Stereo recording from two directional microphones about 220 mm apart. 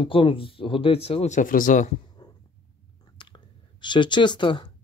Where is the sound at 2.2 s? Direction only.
20° left (ahead or behind).